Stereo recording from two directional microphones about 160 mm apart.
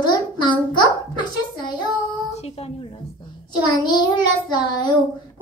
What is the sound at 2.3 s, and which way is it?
Speech, 40° left (ahead or behind).